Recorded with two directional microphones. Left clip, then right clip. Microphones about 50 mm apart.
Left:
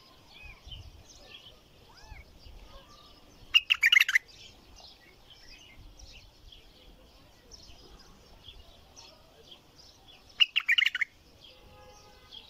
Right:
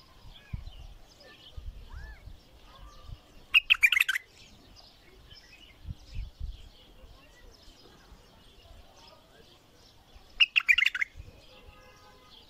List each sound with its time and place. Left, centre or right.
3.5 s bird: right
10.3 s chirp: centre